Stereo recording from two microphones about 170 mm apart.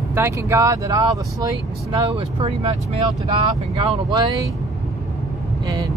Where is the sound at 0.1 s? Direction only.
15° right (ahead or behind).